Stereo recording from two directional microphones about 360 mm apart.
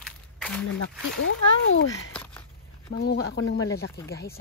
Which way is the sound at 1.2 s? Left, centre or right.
Left.